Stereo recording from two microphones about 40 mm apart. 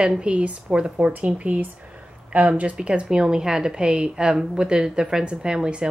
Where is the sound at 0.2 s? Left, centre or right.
Right.